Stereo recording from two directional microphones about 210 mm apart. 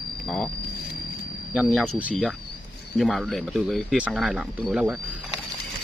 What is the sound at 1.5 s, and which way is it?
Speech, 5° right (ahead or behind).